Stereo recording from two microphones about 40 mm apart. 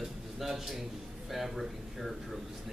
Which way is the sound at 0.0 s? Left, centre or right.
Centre.